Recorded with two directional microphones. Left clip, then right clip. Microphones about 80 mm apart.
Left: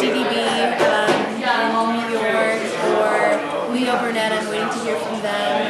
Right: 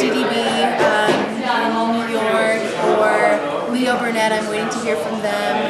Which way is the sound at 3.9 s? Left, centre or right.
Centre.